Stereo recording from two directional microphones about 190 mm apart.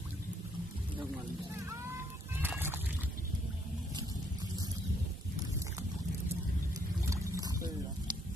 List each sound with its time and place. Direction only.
2.3 s music: 10° right (ahead or behind)
7.1 s wild animals: 15° right (ahead or behind)